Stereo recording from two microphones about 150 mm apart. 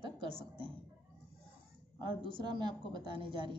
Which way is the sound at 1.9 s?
30° right (ahead or behind).